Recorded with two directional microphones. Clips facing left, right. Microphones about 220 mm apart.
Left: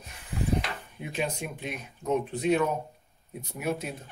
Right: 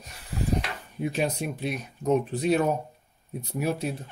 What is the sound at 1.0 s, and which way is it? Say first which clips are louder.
Speech: right 5 dB; 40° right (ahead or behind).